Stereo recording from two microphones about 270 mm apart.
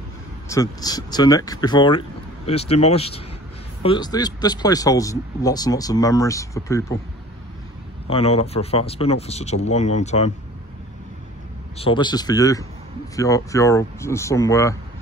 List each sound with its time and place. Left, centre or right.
0.5 s speech: centre
8.1 s speech: left
11.7 s speech: centre